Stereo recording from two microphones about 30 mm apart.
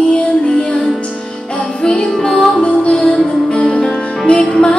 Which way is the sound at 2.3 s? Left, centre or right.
Centre.